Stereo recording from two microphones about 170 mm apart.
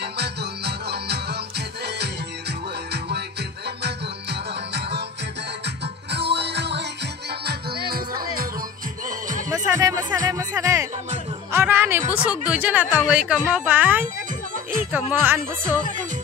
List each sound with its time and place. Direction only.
0.0 s music: 80° right
2.9 s music: 75° right (ahead or behind)
3.8 s music: 85° right
6.1 s music: 85° right
7.4 s music: 65° right (ahead or behind)
9.7 s music: 20° right (ahead or behind)
12.1 s speech: 10° right (ahead or behind)